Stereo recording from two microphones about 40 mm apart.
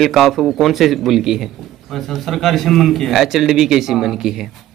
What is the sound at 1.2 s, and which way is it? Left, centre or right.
Speech, centre.